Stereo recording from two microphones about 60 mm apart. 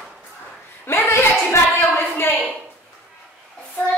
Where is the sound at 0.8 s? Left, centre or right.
Left.